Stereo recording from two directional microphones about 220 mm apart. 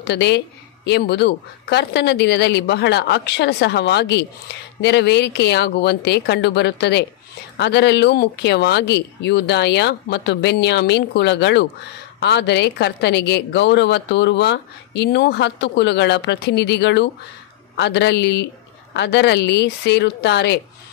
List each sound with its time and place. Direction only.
0.0 s a woman's voice: 50° left (ahead or behind)